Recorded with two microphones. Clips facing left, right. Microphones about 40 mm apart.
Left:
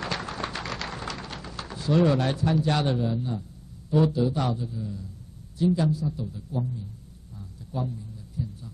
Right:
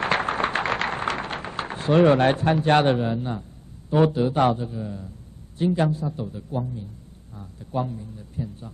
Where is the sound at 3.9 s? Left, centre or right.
Right.